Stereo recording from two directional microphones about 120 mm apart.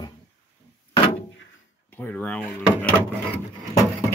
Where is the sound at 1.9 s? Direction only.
15° left (ahead or behind).